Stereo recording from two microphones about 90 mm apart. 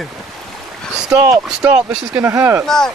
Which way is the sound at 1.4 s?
15° right (ahead or behind).